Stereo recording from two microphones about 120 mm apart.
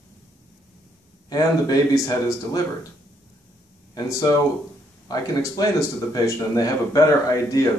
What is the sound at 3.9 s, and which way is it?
Speech, 25° left (ahead or behind).